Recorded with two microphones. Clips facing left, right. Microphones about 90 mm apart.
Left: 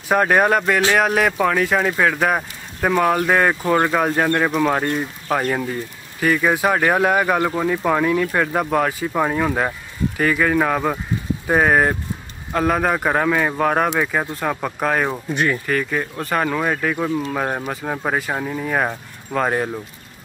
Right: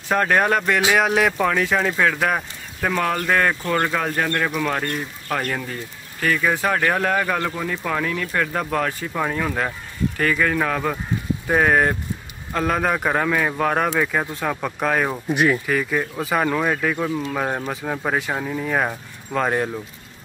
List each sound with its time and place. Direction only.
0.1 s speech: 10° left (ahead or behind)
13.8 s speech: 15° left (ahead or behind)
14.1 s speech: centre (ahead or behind)